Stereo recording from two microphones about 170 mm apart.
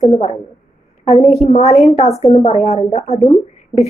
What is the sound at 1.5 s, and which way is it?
A woman's voice, 40° left (ahead or behind).